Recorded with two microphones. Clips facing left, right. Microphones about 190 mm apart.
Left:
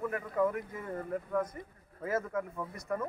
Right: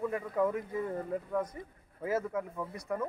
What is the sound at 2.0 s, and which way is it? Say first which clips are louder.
Speech: right 1 dB; 10° right (ahead or behind).